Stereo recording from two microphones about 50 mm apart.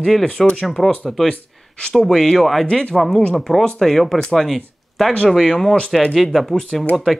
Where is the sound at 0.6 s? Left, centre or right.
Centre.